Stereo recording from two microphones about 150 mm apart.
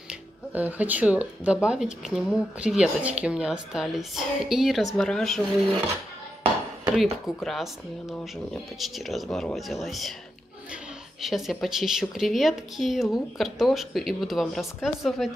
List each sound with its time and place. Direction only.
0.1 s a woman's voice: 10° right (ahead or behind)
7.0 s a woman's voice: centre (ahead or behind)